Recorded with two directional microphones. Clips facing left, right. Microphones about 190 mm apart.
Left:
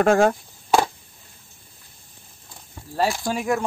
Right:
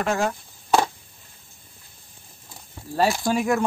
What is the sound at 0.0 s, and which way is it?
Speech, 50° left (ahead or behind).